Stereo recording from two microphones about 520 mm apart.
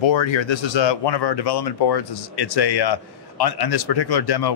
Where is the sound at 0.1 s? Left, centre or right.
Left.